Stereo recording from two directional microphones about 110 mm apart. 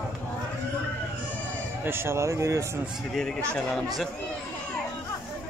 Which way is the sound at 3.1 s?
5° left (ahead or behind).